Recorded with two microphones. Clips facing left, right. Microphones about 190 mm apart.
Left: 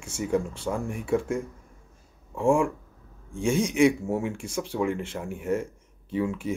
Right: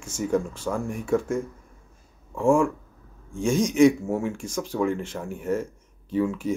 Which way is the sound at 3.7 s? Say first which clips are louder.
Right 5 dB; 20° left (ahead or behind).